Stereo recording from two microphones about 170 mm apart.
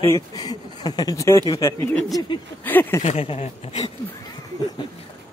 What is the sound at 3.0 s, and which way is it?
Speech, 40° left (ahead or behind).